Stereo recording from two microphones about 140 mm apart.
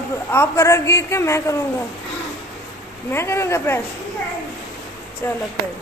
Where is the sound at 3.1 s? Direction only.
20° left (ahead or behind).